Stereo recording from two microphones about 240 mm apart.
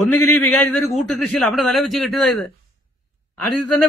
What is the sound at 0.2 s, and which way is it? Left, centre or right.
Speech, left.